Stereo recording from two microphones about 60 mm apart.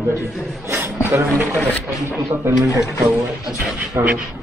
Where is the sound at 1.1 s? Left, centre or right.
Right.